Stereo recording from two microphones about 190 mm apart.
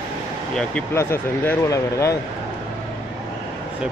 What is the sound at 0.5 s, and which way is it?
Speech, 10° left (ahead or behind).